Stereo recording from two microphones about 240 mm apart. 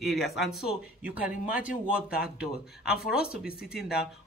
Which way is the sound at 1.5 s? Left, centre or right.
Left.